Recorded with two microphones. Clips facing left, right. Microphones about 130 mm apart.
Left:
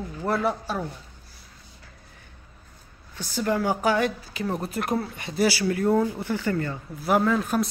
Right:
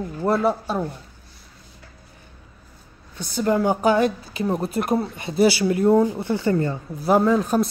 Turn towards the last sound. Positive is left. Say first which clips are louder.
# right 4 dB
turn(degrees=-30)  # may be behind; listen again after turning